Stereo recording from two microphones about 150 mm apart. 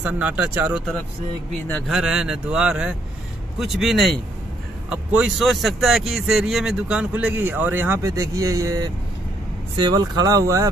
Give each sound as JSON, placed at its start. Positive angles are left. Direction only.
{"t": 0.0, "sound": "speech", "side_deg": -10}
{"t": 1.9, "sound": "a man's voice", "side_deg": -5}